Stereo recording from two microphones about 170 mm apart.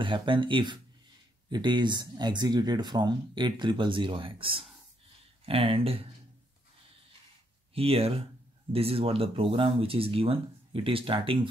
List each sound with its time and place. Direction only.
0.0 s speech: 30° right (ahead or behind)
7.7 s speech: 35° right (ahead or behind)